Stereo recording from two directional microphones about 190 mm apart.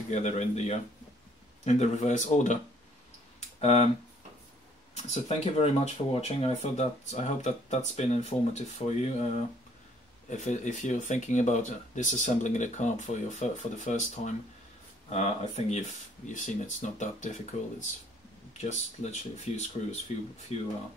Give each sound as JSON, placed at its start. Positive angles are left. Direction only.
{"t": 0.1, "sound": "speech", "side_deg": 35}
{"t": 4.9, "sound": "speech", "side_deg": 35}